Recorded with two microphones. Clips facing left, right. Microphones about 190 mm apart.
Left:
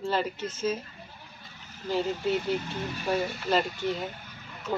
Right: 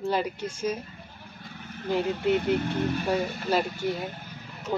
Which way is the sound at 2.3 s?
60° right (ahead or behind).